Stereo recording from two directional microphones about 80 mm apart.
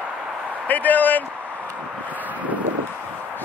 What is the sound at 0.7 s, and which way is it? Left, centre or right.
Speech, left.